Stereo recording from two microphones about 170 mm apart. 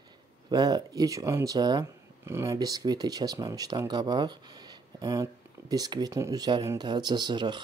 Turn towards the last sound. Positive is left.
turn(degrees=-25)  # may be behind; listen again after turning